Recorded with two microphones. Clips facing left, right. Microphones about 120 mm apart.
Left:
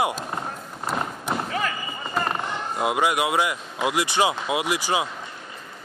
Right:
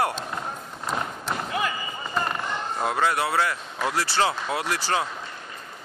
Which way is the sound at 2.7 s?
10° left (ahead or behind).